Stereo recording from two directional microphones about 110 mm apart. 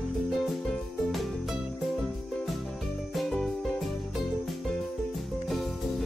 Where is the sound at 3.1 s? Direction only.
Centre (ahead or behind).